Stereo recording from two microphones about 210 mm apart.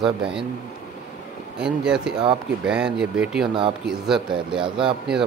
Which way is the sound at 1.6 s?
5° right (ahead or behind).